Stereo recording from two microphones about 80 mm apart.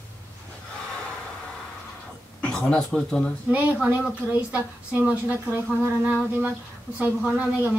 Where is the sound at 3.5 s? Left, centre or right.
Centre.